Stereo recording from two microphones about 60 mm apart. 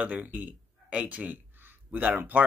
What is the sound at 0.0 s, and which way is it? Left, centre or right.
Speech, right.